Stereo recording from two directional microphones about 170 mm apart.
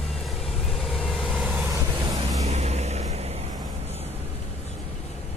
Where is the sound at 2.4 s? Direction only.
40° right (ahead or behind).